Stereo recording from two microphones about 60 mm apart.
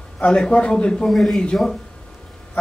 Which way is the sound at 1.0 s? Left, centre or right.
Centre.